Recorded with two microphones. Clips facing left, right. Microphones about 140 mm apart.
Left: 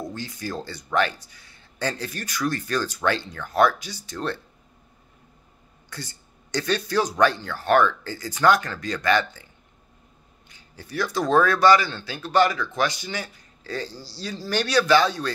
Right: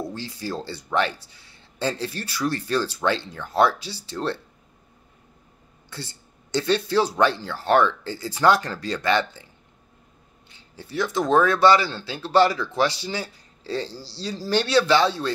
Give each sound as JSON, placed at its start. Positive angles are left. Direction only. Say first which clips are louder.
{"t": 0.1, "sound": "speech", "louder": "right 1 dB", "side_deg": -30}
{"t": 5.9, "sound": "speech", "louder": "right 1 dB", "side_deg": -25}
{"t": 10.5, "sound": "speech", "louder": "right 2 dB", "side_deg": -25}